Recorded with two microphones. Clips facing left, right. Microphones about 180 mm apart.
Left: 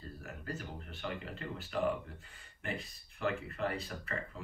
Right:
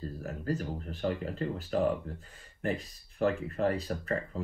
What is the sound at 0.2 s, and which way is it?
Speech, 40° right (ahead or behind).